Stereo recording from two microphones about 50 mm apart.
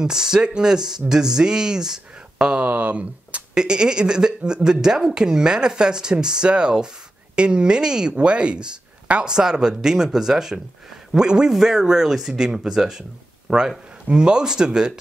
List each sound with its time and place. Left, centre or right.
0.0 s speech: centre
2.6 s speech: right
3.5 s speech: centre